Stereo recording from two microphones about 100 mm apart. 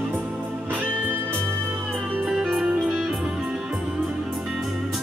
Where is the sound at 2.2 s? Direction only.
Centre (ahead or behind).